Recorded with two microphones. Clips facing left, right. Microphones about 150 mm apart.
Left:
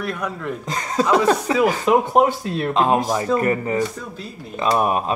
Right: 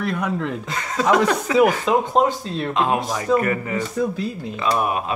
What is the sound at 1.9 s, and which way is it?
Speech, 10° left (ahead or behind).